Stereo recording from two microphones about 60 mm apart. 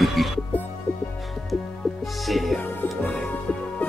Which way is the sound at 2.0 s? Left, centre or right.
Centre.